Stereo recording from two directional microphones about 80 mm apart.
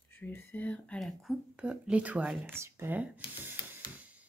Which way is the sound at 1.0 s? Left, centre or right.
Centre.